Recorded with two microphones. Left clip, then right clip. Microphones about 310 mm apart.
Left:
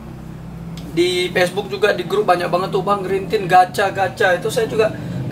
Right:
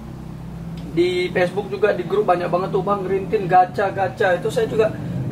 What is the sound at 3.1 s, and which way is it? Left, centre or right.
Speech, centre.